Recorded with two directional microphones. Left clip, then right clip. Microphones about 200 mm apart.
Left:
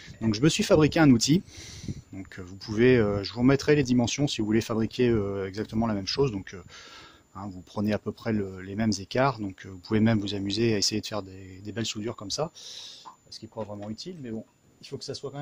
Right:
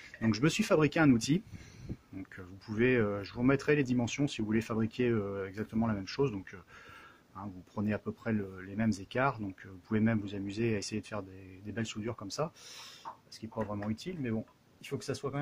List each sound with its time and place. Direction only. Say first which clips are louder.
0.2 s speech: left 6 dB; 40° left (ahead or behind)
13.8 s speech: even; 30° left (ahead or behind)